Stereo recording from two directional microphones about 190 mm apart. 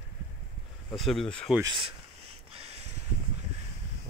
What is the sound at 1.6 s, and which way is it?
Speech, 25° right (ahead or behind).